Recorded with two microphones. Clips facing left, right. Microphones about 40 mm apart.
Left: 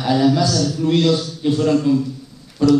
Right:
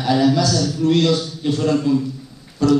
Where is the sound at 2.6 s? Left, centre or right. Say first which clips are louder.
Left 2 dB; centre.